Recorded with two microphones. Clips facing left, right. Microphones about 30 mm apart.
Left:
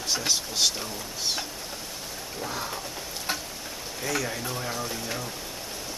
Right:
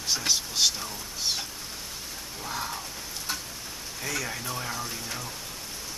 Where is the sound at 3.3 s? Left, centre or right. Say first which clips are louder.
Left 3 dB; left.